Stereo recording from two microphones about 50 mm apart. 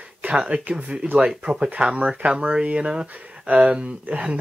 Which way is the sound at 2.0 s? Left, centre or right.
Right.